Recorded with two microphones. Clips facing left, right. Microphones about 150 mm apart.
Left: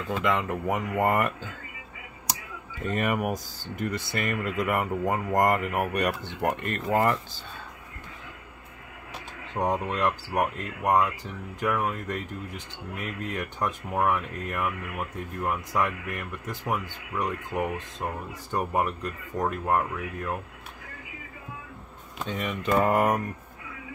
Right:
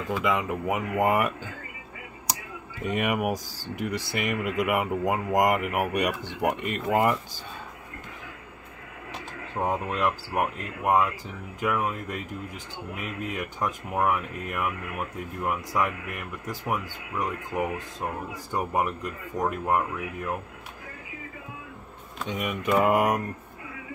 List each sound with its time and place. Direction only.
0.1 s speech: 10° right (ahead or behind)
2.8 s speech: 10° right (ahead or behind)
9.6 s speech: 10° right (ahead or behind)
22.3 s speech: 10° right (ahead or behind)